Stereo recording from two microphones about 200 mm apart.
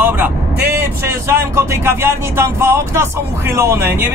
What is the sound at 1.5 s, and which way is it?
Speech, 15° right (ahead or behind).